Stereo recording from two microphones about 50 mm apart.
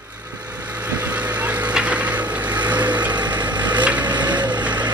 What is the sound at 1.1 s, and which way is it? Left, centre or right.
Vehicle, right.